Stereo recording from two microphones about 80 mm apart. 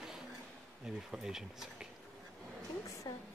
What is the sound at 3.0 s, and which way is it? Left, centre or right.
Speech, left.